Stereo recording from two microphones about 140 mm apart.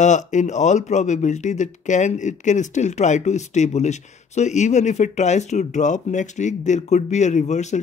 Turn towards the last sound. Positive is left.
turn(degrees=55)  # may be behind; listen again after turning